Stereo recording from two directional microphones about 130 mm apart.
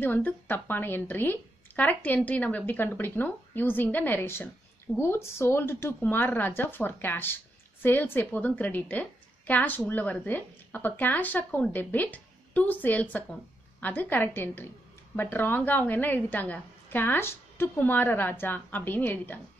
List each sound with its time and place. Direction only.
0.0 s a woman's voice: 15° left (ahead or behind)